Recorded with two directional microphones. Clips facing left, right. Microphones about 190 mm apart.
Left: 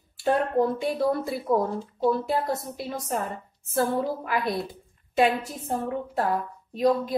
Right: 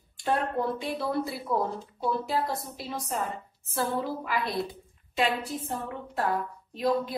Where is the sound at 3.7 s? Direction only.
50° left (ahead or behind).